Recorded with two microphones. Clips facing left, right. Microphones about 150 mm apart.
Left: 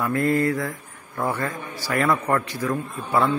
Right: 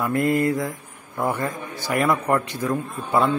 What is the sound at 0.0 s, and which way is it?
A man's voice, 15° right (ahead or behind).